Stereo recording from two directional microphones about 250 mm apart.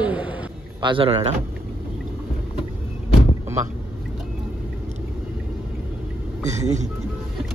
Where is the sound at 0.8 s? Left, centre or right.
Centre.